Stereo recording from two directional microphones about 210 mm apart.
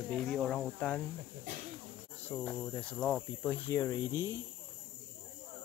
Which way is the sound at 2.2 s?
5° left (ahead or behind).